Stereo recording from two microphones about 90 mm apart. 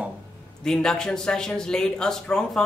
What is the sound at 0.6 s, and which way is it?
Speech, 5° left (ahead or behind).